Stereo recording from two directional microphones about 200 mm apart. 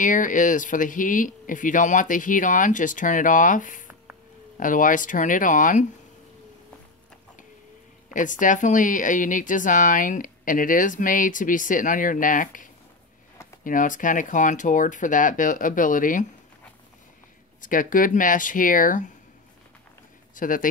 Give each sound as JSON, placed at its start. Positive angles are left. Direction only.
{"t": 0.0, "sound": "speech", "side_deg": 40}
{"t": 8.1, "sound": "speech", "side_deg": 40}
{"t": 13.7, "sound": "speech", "side_deg": 40}
{"t": 17.6, "sound": "speech", "side_deg": 40}
{"t": 20.3, "sound": "speech", "side_deg": 40}